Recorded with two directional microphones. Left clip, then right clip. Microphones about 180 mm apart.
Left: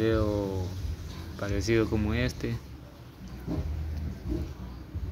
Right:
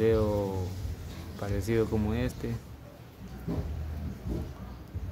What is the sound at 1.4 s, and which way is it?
Speech, 5° left (ahead or behind).